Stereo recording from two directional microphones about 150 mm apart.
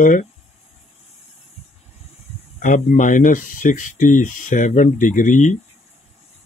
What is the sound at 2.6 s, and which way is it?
Speech, 60° left (ahead or behind).